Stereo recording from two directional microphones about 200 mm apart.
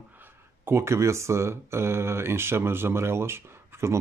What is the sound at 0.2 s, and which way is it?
Speech, 10° right (ahead or behind).